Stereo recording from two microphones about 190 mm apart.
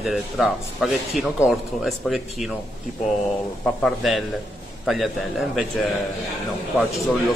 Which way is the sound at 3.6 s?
Centre (ahead or behind).